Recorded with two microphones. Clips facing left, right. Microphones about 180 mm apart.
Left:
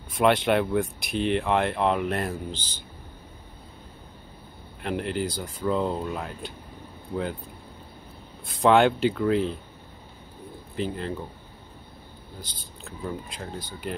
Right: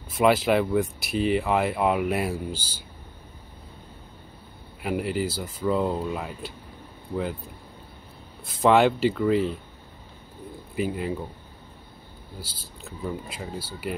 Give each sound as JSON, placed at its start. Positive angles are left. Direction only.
{"t": 0.1, "sound": "speech", "side_deg": 0}
{"t": 4.8, "sound": "speech", "side_deg": -5}
{"t": 8.5, "sound": "speech", "side_deg": 0}
{"t": 10.8, "sound": "speech", "side_deg": -10}
{"t": 12.4, "sound": "speech", "side_deg": -5}